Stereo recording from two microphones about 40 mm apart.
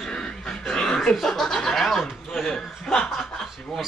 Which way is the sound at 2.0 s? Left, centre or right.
Centre.